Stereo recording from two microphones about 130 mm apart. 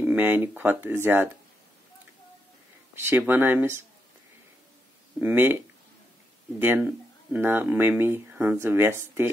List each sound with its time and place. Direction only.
0.0 s speech: 15° right (ahead or behind)
2.9 s speech: 15° right (ahead or behind)
5.2 s speech: 15° right (ahead or behind)
6.6 s speech: 15° right (ahead or behind)